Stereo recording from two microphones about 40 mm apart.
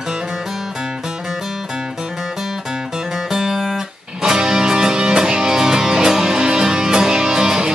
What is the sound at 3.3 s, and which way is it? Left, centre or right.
Music, centre.